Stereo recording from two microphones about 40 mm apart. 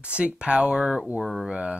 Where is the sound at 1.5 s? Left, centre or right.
Right.